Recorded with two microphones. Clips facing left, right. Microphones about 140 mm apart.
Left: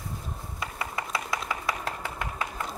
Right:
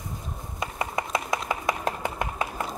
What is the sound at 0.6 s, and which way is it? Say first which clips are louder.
Chopping: right 5 dB; 20° right (ahead or behind).